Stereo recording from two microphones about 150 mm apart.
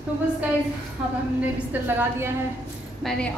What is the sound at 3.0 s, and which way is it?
Speech, 5° left (ahead or behind).